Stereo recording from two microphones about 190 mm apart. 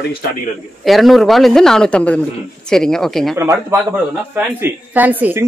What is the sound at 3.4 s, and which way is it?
A woman's voice, 15° right (ahead or behind).